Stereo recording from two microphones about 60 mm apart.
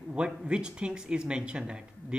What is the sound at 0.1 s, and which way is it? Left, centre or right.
Speech, centre.